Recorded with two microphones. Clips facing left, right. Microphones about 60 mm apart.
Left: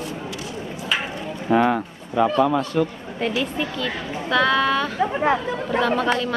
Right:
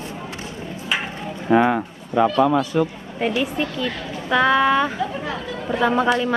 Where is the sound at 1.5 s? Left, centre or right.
Centre.